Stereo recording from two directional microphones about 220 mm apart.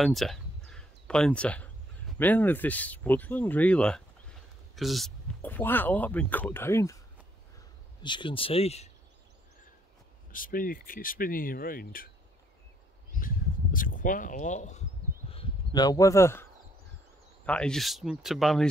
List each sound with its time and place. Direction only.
0.0 s speech: centre (ahead or behind)
8.0 s speech: 20° left (ahead or behind)
10.3 s speech: 40° left (ahead or behind)
13.1 s a sound: 40° left (ahead or behind)
15.3 s speech: 20° left (ahead or behind)
17.5 s speech: 5° left (ahead or behind)